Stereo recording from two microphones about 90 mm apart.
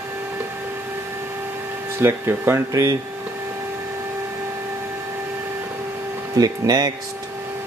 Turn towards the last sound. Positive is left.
turn(degrees=-45)  # may be behind; listen again after turning